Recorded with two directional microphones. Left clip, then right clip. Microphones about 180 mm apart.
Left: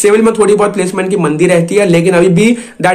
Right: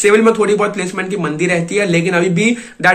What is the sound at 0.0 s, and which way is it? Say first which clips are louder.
A man's voice: left 3 dB; 20° right (ahead or behind).